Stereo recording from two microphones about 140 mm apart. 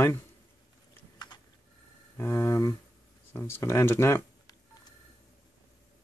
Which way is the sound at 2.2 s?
15° left (ahead or behind).